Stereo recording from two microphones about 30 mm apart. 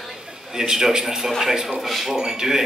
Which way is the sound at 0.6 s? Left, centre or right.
Centre.